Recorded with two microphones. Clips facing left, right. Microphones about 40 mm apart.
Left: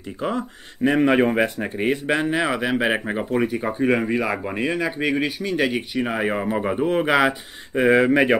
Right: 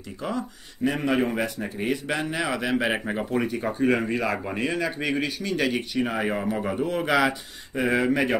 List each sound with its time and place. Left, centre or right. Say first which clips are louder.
0.2 s speech: left 4 dB; left